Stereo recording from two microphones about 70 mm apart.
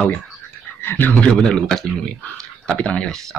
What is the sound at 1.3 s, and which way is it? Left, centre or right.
Speech, centre.